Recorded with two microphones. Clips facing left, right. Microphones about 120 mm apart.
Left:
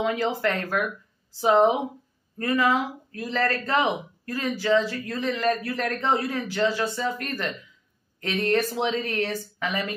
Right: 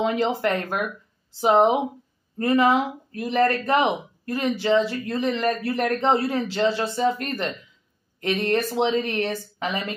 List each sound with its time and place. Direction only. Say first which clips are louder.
0.0 s speech: right 2 dB; 25° right (ahead or behind)